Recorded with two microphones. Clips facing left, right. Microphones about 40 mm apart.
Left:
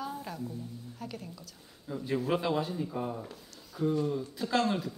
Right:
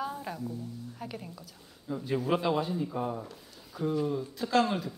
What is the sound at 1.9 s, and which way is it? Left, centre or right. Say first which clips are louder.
Speech: right 1 dB; centre.